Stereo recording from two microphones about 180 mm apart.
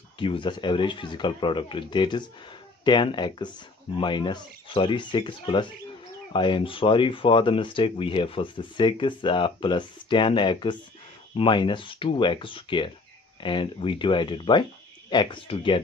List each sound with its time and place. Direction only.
0.2 s speech: 30° left (ahead or behind)